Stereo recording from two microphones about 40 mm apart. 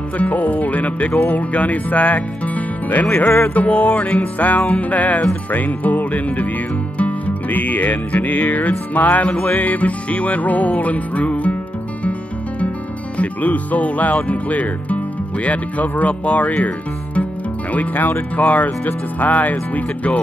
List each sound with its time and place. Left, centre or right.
0.2 s music: left
3.3 s music: left
3.5 s music: left
13.2 s speech: left
18.3 s music: left